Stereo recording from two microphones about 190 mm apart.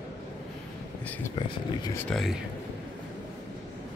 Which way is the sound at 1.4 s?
20° left (ahead or behind).